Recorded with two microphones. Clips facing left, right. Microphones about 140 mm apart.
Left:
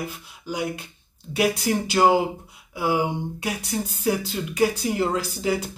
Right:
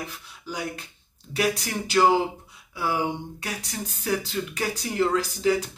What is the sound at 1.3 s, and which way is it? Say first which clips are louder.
Speech: left 4 dB; 15° left (ahead or behind).